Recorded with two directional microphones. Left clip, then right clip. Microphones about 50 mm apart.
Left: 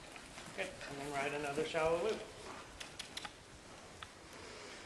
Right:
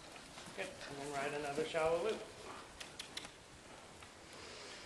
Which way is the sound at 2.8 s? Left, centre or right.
Left.